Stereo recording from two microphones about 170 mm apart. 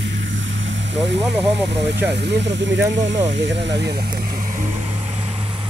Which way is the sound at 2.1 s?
85° right.